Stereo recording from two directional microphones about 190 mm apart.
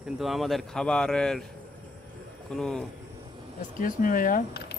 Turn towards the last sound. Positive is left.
turn(degrees=55)  # may be behind; listen again after turning